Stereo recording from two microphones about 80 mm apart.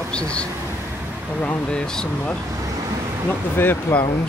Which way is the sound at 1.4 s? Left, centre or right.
Centre.